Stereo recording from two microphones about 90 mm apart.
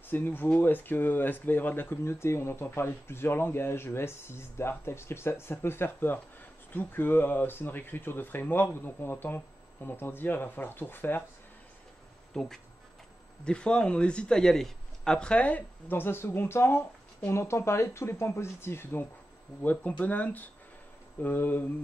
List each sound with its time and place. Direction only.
0.1 s speech: 25° left (ahead or behind)
12.3 s speech: 5° left (ahead or behind); by 21.6 s 20° left (ahead or behind)